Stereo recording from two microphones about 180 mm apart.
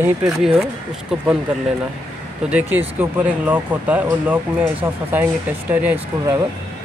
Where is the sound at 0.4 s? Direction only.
Centre (ahead or behind).